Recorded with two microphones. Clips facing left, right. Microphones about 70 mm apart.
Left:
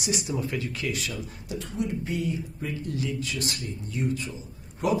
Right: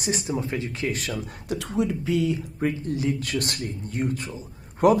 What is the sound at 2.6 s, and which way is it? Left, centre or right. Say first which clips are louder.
A man's voice: right 7 dB; right.